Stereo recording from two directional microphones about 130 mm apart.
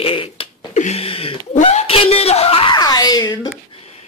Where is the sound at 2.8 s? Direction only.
30° left (ahead or behind).